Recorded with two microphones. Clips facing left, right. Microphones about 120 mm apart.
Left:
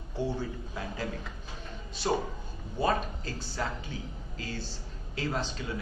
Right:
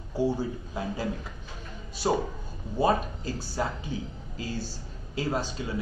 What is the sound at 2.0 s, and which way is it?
Speech, 20° right (ahead or behind).